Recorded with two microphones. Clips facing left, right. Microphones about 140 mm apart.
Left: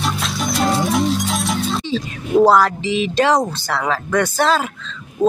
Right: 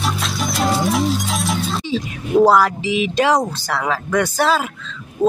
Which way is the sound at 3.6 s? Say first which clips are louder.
Left 1 dB; 10° right (ahead or behind).